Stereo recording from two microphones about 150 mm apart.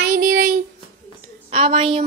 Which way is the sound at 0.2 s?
80° right.